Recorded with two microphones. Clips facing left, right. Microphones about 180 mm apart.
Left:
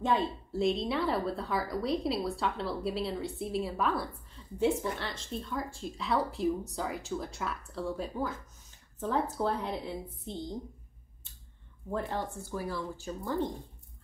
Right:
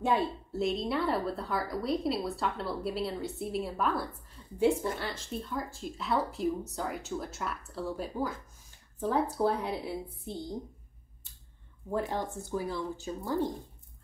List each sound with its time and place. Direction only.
0.0 s a woman's voice: 10° right (ahead or behind)
11.9 s a woman's voice: 10° right (ahead or behind)